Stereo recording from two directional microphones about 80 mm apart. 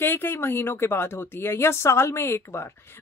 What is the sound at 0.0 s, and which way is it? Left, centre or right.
Speech, left.